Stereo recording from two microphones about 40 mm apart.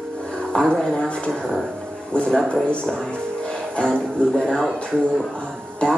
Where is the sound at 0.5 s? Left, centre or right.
Left.